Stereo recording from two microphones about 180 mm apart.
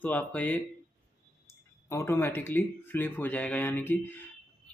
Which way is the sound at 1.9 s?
15° left (ahead or behind).